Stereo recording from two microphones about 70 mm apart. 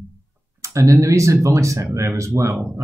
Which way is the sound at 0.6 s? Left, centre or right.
Right.